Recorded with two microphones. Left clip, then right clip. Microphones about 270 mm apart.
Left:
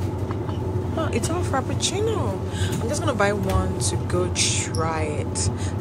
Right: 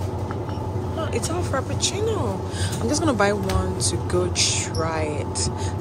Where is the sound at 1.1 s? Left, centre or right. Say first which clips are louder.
Right 1 dB; centre.